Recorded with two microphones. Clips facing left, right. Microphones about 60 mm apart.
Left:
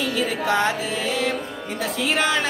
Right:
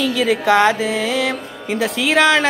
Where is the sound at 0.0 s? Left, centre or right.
Right.